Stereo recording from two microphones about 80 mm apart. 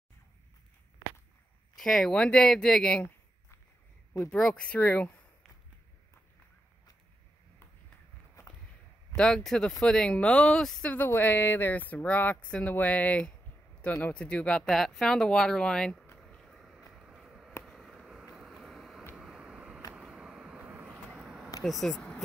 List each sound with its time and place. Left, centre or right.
1.8 s speech: centre
4.3 s speech: centre
9.1 s speech: centre
11.1 s speech: left; by 16.0 s centre
16.3 s a sound: centre
18.3 s vehicle: centre
19.1 s vehicle: centre
21.1 s a sound: centre
21.6 s speech: centre